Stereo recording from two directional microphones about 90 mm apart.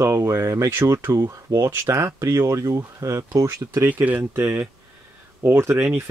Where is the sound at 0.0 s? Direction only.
30° right (ahead or behind).